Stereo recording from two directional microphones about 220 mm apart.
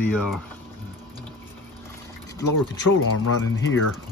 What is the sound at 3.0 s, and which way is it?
Speech, 65° left (ahead or behind).